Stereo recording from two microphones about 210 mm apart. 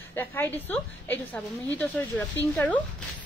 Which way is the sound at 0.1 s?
10° left (ahead or behind).